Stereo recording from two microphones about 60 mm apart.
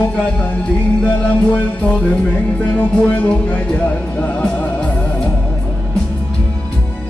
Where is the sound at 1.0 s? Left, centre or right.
Left.